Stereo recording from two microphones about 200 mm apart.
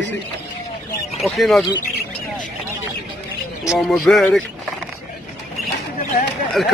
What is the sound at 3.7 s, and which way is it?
Speech, centre (ahead or behind).